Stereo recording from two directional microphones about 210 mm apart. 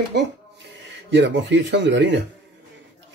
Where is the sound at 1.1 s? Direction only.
55° right (ahead or behind).